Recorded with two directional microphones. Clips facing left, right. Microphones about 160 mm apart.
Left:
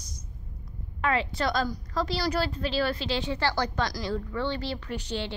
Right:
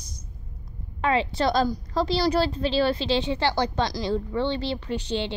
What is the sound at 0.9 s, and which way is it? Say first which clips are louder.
A woman's voice: right 4 dB; 25° right (ahead or behind).